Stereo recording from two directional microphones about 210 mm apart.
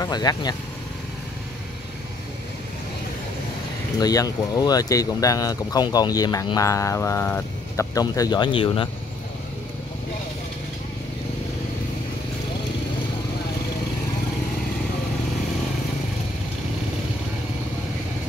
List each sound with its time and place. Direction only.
0.0 s speech: 20° left (ahead or behind)
4.0 s speech: 15° left (ahead or behind)